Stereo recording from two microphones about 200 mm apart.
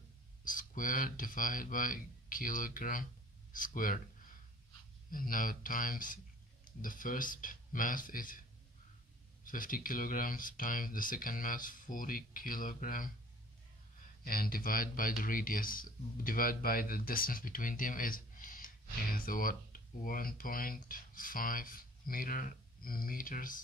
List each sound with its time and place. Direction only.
0.4 s speech: 40° left (ahead or behind)
5.1 s speech: 45° left (ahead or behind)
9.4 s speech: 45° left (ahead or behind)
14.2 s speech: 45° left (ahead or behind)